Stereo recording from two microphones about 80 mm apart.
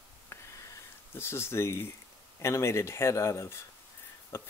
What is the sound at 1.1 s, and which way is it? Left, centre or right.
Speech, left.